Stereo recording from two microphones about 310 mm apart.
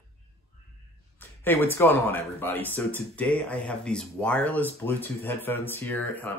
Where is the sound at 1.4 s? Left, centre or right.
Centre.